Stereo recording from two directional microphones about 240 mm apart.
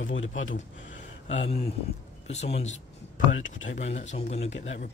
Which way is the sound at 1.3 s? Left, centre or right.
Left.